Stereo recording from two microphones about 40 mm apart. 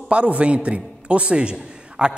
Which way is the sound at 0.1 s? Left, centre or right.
Right.